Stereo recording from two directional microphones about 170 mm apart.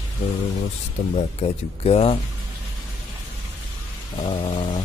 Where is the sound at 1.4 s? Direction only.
35° left (ahead or behind).